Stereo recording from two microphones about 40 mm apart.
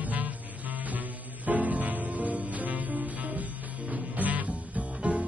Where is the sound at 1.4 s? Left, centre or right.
Right.